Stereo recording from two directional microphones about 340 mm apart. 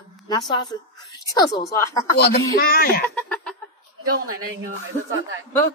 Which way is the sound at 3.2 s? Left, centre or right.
Centre.